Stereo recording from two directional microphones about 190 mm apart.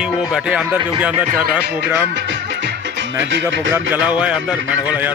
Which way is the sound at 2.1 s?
65° right (ahead or behind).